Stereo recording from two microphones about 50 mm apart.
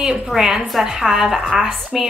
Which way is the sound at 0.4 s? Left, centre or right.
Centre.